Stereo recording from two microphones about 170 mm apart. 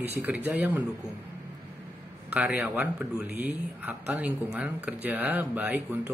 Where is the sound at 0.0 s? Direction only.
10° right (ahead or behind).